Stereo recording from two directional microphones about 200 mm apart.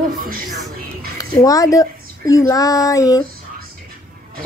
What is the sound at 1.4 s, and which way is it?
A woman's voice, 15° left (ahead or behind).